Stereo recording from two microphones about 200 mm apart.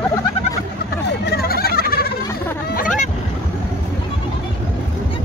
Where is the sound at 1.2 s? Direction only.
50° left (ahead or behind).